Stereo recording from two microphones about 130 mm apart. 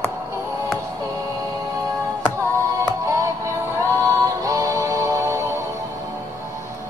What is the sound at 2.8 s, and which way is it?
Music, 25° right (ahead or behind).